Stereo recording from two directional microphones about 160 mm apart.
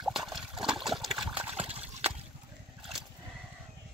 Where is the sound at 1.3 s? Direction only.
35° right (ahead or behind).